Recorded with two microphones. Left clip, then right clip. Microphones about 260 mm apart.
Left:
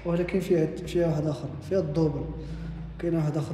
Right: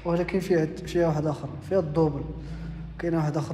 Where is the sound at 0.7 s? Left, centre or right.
Centre.